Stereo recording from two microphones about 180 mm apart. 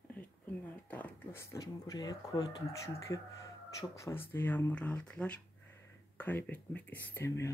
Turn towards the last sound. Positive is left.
turn(degrees=15)  # may be behind; listen again after turning